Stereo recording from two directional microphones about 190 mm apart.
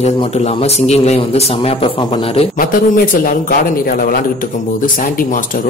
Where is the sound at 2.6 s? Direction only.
45° left (ahead or behind).